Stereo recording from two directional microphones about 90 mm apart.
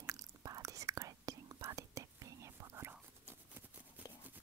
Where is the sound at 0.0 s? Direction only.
40° right (ahead or behind).